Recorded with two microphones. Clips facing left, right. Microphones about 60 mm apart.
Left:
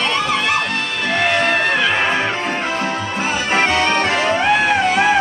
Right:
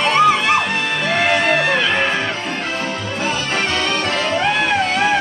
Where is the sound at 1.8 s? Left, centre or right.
Centre.